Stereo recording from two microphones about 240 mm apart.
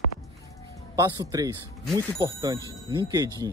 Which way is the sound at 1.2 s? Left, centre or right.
Centre.